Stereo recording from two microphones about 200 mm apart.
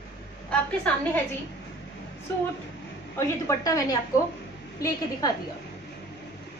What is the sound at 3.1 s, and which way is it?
Speech, 15° left (ahead or behind).